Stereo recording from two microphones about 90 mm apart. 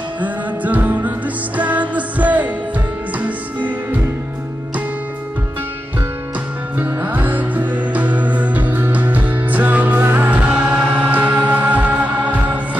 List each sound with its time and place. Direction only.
0.2 s music: 15° right (ahead or behind)
6.8 s music: 20° right (ahead or behind)